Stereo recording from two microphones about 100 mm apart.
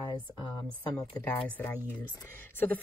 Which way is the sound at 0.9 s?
10° left (ahead or behind).